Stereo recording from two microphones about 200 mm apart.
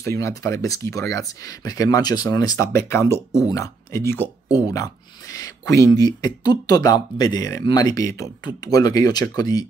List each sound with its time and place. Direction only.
0.0 s speech: 15° left (ahead or behind)